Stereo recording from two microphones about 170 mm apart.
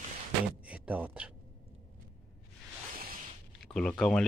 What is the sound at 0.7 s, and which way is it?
Speech, 10° right (ahead or behind).